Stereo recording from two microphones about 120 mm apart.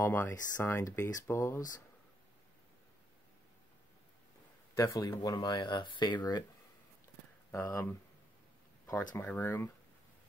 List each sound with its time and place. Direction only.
0.0 s speech: 20° left (ahead or behind)
4.7 s speech: 25° left (ahead or behind)
7.5 s speech: 15° left (ahead or behind)
9.1 s speech: 15° left (ahead or behind)